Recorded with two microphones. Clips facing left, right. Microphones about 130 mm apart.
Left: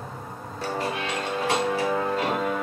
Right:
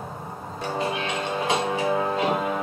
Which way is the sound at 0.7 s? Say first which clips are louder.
Right 2 dB; 15° right (ahead or behind).